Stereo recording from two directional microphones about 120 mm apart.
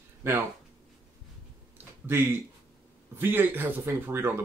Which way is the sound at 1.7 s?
20° right (ahead or behind).